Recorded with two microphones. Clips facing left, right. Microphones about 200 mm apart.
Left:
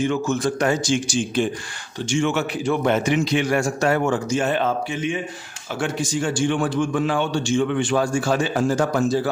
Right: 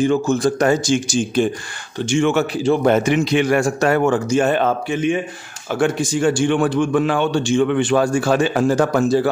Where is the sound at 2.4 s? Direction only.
30° right (ahead or behind).